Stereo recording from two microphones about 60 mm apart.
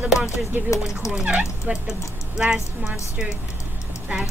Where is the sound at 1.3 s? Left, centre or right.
Right.